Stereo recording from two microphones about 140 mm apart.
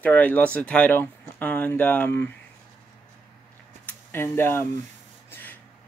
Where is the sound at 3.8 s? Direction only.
15° left (ahead or behind).